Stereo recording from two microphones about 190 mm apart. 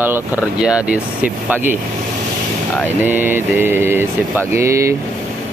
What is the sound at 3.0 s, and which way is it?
Speech, 10° right (ahead or behind).